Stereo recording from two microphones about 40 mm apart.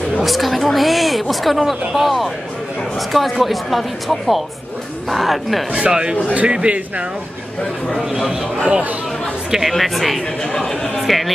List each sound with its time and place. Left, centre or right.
0.2 s speech: centre
5.7 s a man's voice: right
8.1 s a man's voice: centre
9.5 s speech: centre